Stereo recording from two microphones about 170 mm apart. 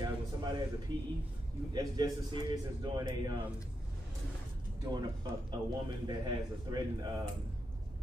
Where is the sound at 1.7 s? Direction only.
20° right (ahead or behind).